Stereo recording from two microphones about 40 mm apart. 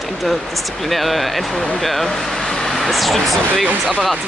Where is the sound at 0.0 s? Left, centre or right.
Centre.